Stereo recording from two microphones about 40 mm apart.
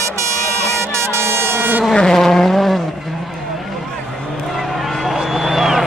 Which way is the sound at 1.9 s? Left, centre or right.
Centre.